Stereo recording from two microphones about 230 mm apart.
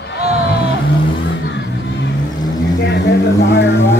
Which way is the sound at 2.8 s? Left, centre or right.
Left.